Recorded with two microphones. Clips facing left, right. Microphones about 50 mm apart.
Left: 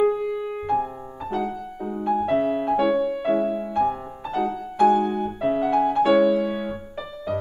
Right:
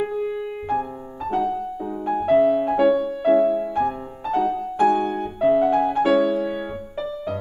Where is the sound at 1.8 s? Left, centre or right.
Centre.